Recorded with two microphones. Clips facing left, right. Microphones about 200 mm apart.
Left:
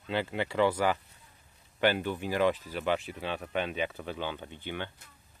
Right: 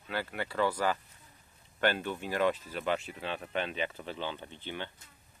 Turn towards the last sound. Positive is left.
turn(degrees=15)  # may be behind; listen again after turning